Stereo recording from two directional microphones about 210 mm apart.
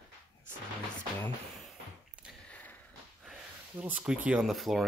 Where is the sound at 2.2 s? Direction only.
5° left (ahead or behind).